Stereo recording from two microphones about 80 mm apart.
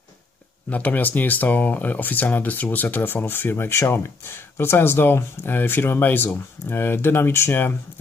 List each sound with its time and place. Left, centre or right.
0.7 s speech: left